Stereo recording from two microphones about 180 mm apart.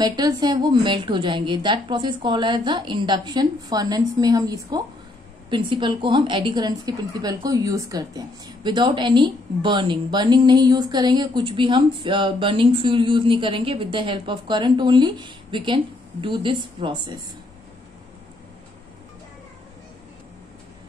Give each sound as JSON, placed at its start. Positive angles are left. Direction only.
{"t": 0.0, "sound": "a woman's voice", "side_deg": -20}